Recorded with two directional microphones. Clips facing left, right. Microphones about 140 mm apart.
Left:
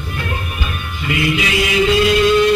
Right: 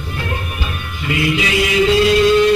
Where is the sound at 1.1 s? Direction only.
30° right (ahead or behind).